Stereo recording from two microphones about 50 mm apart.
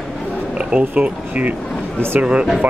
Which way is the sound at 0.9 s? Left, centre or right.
Right.